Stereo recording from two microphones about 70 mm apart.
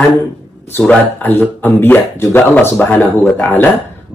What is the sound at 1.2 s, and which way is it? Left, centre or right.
Speech, left.